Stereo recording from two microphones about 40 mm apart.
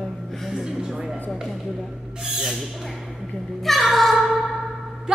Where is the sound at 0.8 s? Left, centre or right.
Centre.